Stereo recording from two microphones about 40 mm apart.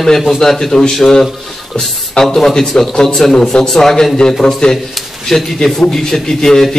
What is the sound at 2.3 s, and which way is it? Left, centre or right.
A man's voice, centre.